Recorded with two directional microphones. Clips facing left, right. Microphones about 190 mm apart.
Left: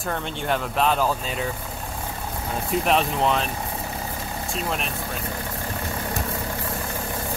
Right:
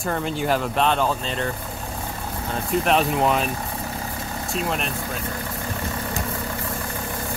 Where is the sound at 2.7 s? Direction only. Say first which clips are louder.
Right 2 dB; centre (ahead or behind).